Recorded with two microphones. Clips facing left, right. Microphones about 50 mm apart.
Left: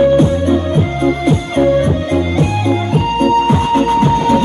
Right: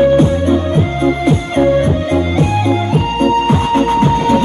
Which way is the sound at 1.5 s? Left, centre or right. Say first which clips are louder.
Even; right.